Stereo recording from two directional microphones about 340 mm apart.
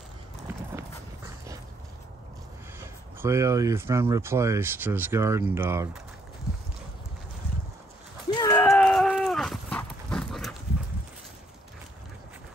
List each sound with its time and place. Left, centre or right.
0.7 s horse: centre
3.2 s speech: centre
8.3 s a sound: centre